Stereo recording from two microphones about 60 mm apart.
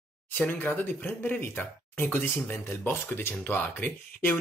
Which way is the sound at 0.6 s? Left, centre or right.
Left.